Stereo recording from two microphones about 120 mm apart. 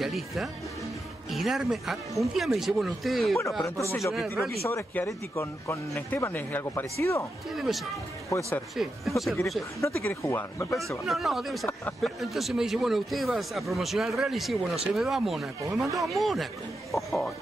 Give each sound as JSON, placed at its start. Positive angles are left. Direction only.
{"t": 0.0, "sound": "speech", "side_deg": 0}
{"t": 4.6, "sound": "speech", "side_deg": 20}
{"t": 7.5, "sound": "speech", "side_deg": -5}
{"t": 9.8, "sound": "speech", "side_deg": 25}
{"t": 10.9, "sound": "speech", "side_deg": 0}